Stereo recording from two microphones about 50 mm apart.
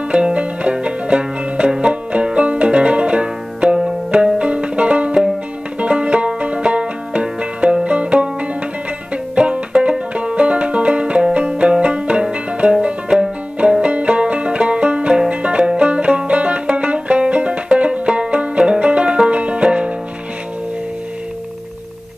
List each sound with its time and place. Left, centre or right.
0.1 s music: right
5.8 s banjo: right
7.8 s music: right